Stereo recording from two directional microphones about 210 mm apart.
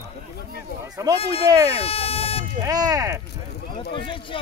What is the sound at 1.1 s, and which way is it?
Speech, 30° left (ahead or behind).